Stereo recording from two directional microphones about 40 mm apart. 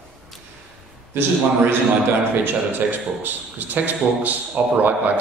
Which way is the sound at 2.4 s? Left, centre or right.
Right.